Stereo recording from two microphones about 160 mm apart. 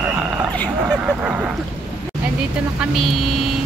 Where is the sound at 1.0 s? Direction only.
10° right (ahead or behind).